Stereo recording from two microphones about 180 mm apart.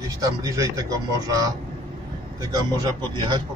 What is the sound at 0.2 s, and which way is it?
Speech, 20° right (ahead or behind).